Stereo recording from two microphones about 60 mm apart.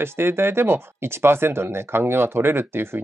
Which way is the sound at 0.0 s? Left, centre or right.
Right.